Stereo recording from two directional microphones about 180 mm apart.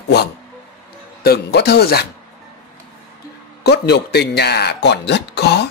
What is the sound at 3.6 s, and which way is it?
A man's voice, 65° left (ahead or behind).